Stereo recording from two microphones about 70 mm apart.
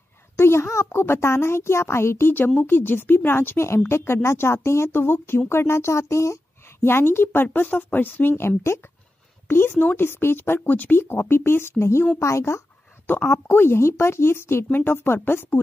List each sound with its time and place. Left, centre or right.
0.4 s a child's voice: left
7.4 s a child's voice: left